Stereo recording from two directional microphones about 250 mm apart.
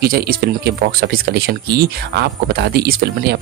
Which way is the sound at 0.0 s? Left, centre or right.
Right.